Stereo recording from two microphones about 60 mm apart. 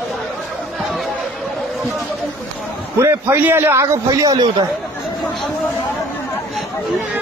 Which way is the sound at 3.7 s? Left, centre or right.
Right.